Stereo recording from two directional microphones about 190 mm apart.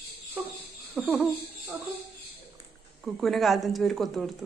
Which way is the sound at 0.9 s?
Centre (ahead or behind).